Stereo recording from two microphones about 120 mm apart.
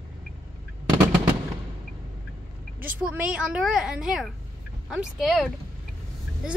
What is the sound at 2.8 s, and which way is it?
A woman's voice, 10° right (ahead or behind).